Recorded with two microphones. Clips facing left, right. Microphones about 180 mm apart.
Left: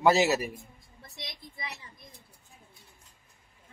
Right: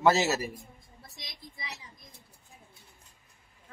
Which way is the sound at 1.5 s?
55° left (ahead or behind).